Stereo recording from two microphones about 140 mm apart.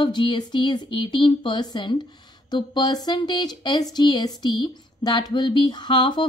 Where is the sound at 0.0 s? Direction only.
35° left (ahead or behind).